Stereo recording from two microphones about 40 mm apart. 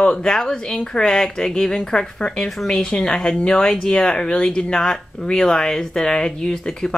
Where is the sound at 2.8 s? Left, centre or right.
Left.